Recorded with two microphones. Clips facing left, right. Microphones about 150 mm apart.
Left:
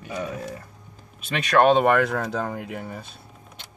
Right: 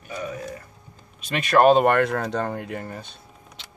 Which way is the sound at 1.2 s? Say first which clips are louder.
Right 1 dB; centre (ahead or behind).